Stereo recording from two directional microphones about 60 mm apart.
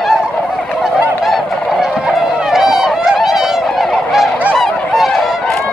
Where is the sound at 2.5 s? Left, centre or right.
Centre.